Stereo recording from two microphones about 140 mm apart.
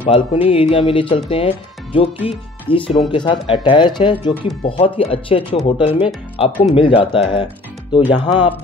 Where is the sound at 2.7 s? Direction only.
40° left (ahead or behind).